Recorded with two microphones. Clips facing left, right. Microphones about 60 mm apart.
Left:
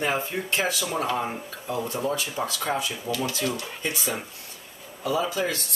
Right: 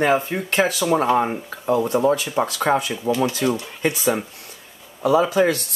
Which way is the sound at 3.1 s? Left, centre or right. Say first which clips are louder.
Right 7 dB; right.